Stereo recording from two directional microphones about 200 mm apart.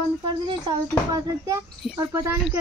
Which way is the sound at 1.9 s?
10° right (ahead or behind).